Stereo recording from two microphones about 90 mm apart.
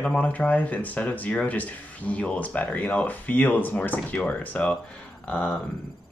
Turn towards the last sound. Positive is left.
turn(degrees=10)  # may be behind; listen again after turning